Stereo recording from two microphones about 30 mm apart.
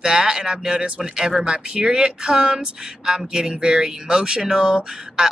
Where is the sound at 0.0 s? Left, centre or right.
Right.